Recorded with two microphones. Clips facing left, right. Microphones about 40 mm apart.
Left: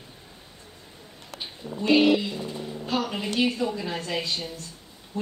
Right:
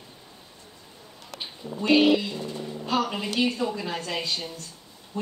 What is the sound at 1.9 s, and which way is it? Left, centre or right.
A woman's voice, centre.